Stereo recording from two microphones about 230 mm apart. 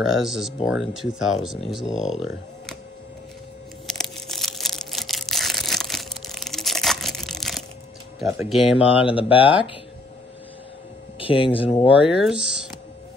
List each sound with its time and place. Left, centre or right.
0.0 s speech: centre
3.8 s crushing: centre
8.5 s speech: centre
9.1 s speech: left
11.1 s speech: left
11.9 s speech: centre